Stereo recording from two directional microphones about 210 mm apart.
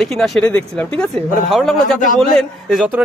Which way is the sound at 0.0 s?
Centre (ahead or behind).